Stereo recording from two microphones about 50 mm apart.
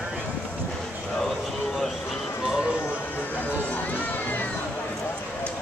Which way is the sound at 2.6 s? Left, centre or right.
Left.